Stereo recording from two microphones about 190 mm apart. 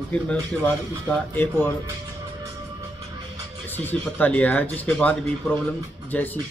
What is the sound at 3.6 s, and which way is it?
Speech, 10° left (ahead or behind).